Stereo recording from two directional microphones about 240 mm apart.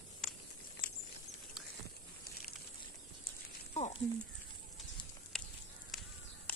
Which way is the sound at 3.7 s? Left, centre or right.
Left.